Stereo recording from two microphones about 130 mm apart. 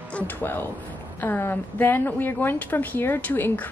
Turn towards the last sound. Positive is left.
turn(degrees=15)  # may be behind; listen again after turning